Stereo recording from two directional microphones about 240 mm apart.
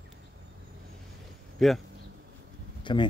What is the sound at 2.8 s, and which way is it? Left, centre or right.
Speech, centre.